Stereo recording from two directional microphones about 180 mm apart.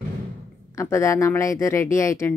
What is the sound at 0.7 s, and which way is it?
Speech, 15° left (ahead or behind).